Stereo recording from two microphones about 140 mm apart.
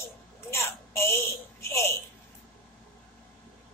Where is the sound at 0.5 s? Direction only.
20° left (ahead or behind).